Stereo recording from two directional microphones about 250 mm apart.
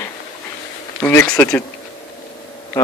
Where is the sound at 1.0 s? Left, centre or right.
Centre.